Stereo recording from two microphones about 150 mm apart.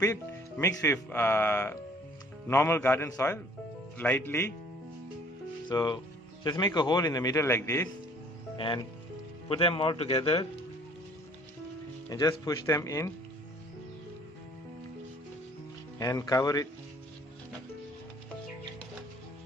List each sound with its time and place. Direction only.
0.0 s a man's voice: 20° left (ahead or behind)
5.7 s a man's voice: 30° left (ahead or behind)
8.5 s speech: 35° left (ahead or behind)
12.1 s a man's voice: 25° left (ahead or behind)
16.0 s a man's voice: 25° left (ahead or behind)